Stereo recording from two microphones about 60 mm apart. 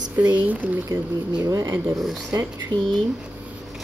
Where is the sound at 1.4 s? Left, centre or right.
Right.